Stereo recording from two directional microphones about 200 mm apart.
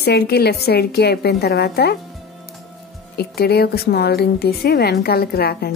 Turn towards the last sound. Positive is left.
turn(degrees=50)  # may be behind; listen again after turning